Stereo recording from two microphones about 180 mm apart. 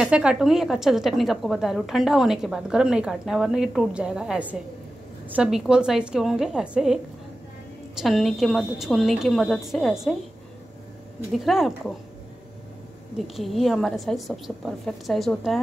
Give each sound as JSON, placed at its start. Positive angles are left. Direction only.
{"t": 0.0, "sound": "a woman's voice", "side_deg": -5}
{"t": 8.0, "sound": "a woman's voice", "side_deg": 0}
{"t": 11.3, "sound": "a woman's voice", "side_deg": 0}
{"t": 13.4, "sound": "a woman's voice", "side_deg": 0}